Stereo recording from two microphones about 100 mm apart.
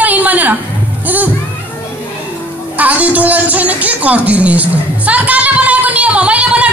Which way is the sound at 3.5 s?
15° right (ahead or behind).